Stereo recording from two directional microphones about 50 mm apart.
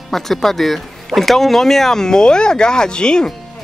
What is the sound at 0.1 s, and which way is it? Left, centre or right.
Speech, centre.